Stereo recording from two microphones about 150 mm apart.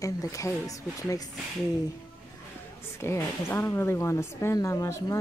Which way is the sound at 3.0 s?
15° left (ahead or behind).